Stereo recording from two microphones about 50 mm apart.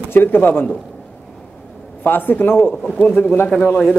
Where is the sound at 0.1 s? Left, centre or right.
Left.